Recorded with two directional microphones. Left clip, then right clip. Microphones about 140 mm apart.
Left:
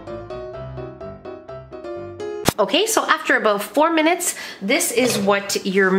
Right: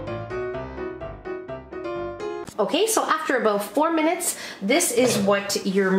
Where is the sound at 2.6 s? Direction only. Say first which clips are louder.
Left 2 dB; 35° left (ahead or behind).